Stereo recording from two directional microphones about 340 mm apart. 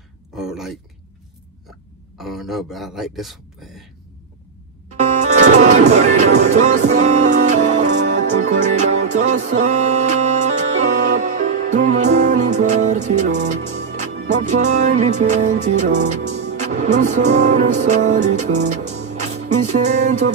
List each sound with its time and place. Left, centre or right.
0.3 s a sound: centre
2.1 s speech: centre
4.9 s music: centre